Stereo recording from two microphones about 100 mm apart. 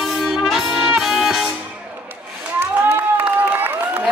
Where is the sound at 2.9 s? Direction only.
20° right (ahead or behind).